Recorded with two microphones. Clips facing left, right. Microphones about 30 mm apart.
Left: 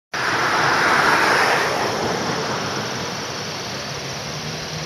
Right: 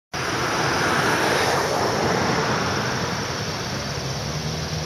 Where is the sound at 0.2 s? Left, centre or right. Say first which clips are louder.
Left 5 dB; left.